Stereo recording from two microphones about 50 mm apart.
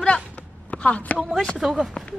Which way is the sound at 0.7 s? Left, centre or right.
Left.